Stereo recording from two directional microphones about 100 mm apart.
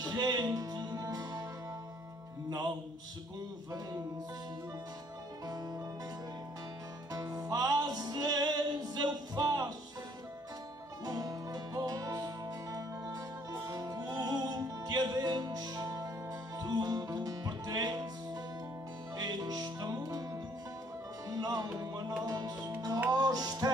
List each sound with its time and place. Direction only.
0.0 s music: 40° right (ahead or behind)
7.1 s music: 40° right (ahead or behind)
11.1 s music: 40° right (ahead or behind)
21.3 s music: 40° right (ahead or behind)